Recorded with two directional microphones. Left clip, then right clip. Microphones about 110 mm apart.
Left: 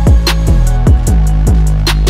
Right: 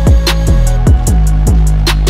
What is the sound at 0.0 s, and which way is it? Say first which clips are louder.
Music: right 1 dB; centre (ahead or behind).